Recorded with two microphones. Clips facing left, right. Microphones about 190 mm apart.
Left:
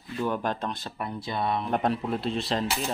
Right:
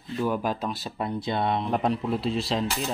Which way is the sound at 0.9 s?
20° right (ahead or behind).